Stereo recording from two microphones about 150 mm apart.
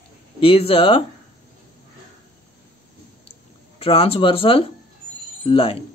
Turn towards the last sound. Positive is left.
turn(degrees=40)  # may be behind; listen again after turning